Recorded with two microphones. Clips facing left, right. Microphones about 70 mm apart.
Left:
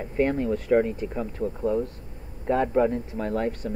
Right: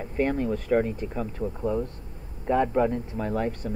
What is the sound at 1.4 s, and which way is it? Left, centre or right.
Speech, centre.